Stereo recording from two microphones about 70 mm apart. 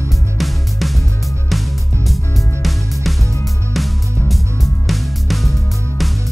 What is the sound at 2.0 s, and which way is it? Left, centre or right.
Music, centre.